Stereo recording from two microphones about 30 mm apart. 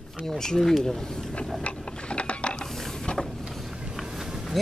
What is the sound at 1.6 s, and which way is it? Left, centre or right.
Mechanisms, left.